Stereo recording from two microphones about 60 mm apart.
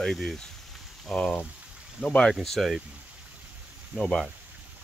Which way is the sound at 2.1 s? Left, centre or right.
Centre.